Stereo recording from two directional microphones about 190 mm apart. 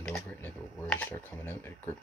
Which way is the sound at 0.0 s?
5° left (ahead or behind).